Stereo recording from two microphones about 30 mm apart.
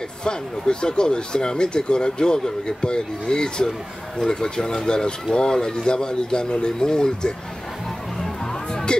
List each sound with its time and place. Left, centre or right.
0.2 s speech: left